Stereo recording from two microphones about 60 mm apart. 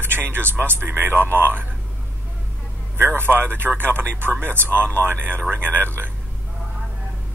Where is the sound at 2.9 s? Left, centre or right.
Right.